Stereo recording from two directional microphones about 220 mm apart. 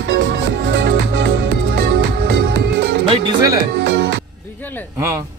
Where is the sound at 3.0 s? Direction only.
15° right (ahead or behind).